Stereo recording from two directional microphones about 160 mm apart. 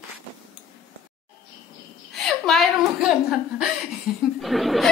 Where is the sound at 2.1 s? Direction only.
5° left (ahead or behind).